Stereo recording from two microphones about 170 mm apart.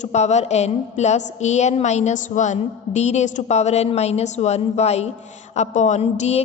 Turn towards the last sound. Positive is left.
turn(degrees=40)  # may be behind; listen again after turning